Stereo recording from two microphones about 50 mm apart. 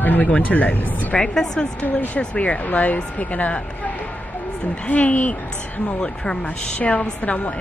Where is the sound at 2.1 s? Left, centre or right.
Left.